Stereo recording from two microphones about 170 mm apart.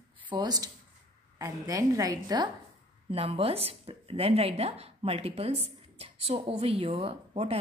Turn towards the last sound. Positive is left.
turn(degrees=-35)  # may be behind; listen again after turning